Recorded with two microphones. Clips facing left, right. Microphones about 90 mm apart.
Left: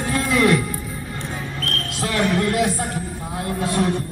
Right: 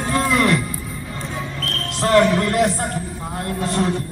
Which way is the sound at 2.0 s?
50° right (ahead or behind).